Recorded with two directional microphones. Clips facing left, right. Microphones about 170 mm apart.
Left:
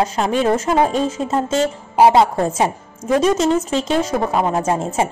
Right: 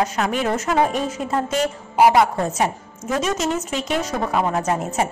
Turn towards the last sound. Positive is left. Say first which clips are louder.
# left 3 dB
turn(degrees=25)  # may be behind; listen again after turning